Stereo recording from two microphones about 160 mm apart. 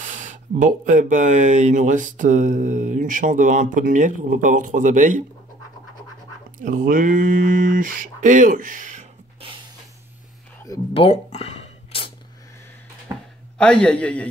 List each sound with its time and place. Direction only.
0.0 s speech: 50° right (ahead or behind)
6.6 s speech: 55° right (ahead or behind)
10.9 s a sound: 35° left (ahead or behind)
13.6 s a man's voice: 5° left (ahead or behind)